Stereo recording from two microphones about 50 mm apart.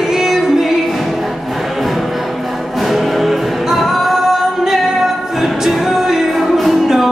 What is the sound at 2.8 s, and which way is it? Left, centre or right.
Music, centre.